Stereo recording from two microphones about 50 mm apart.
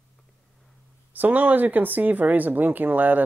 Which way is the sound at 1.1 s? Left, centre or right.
Right.